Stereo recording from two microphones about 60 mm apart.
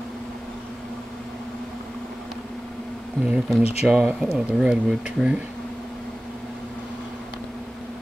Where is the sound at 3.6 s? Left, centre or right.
Centre.